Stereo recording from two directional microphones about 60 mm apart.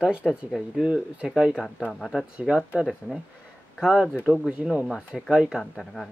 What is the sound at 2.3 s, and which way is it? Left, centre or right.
Speech, centre.